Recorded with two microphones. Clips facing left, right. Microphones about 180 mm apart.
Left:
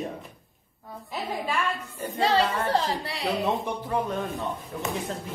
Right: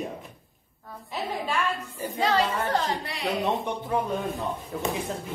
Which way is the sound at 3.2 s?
Centre (ahead or behind).